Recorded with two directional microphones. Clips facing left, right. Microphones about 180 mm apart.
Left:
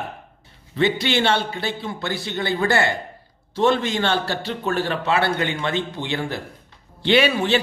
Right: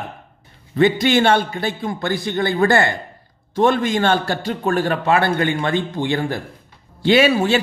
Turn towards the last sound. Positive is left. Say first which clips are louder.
# right 3 dB
turn(degrees=-40)  # may be behind; listen again after turning